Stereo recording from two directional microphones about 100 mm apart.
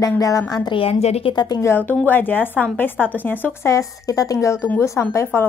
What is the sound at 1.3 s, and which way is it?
Speech, 45° left (ahead or behind).